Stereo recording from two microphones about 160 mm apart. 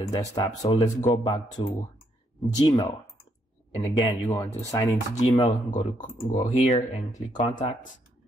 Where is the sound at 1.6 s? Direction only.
30° left (ahead or behind).